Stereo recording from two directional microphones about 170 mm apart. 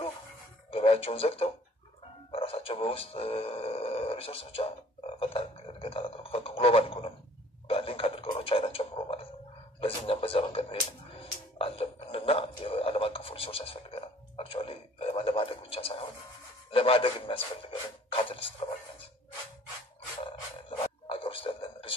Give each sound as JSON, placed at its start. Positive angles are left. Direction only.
{"t": 0.7, "sound": "speech", "side_deg": 35}
{"t": 5.2, "sound": "a sound", "side_deg": 30}
{"t": 9.8, "sound": "a man's voice", "side_deg": 35}
{"t": 11.5, "sound": "didgeridoo", "side_deg": 35}
{"t": 16.7, "sound": "speech", "side_deg": 35}
{"t": 21.1, "sound": "a sound", "side_deg": 30}